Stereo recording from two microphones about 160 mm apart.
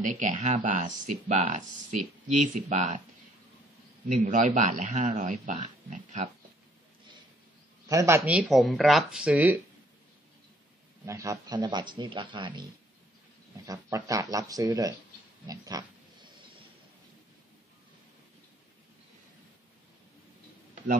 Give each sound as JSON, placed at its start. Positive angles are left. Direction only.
{"t": 0.0, "sound": "speech", "side_deg": -55}
{"t": 4.0, "sound": "speech", "side_deg": -50}
{"t": 7.9, "sound": "speech", "side_deg": -20}
{"t": 8.2, "sound": "speech", "side_deg": -5}
{"t": 11.1, "sound": "speech", "side_deg": -20}
{"t": 13.7, "sound": "speech", "side_deg": -20}
{"t": 15.4, "sound": "pig", "side_deg": -25}